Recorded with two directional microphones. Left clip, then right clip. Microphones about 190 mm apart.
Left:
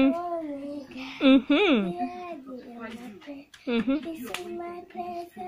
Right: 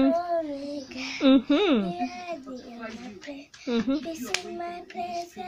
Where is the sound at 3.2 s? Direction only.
10° right (ahead or behind).